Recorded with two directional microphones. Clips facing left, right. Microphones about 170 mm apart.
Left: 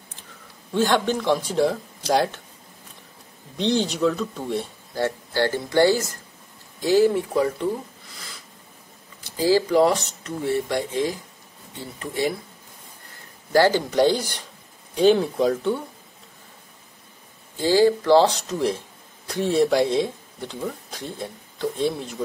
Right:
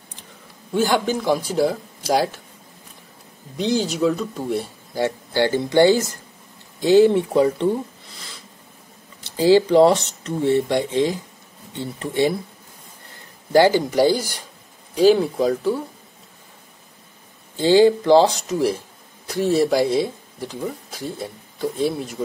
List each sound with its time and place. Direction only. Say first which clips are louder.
0.7 s speech: right 1 dB; 5° right (ahead or behind)
3.5 s speech: right 1 dB; 5° right (ahead or behind)
5.0 s speech: right 3 dB; 15° right (ahead or behind)
9.2 s speech: right 5 dB; 25° right (ahead or behind)
13.5 s speech: right 3 dB; 15° right (ahead or behind)
17.6 s speech: right 4 dB; 20° right (ahead or behind); by 22.1 s 5° right (ahead or behind)